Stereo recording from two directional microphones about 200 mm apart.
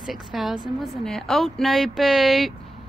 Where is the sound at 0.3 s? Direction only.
Centre (ahead or behind).